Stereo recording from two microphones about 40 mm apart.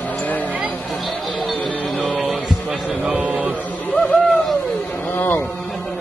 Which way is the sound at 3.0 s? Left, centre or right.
Right.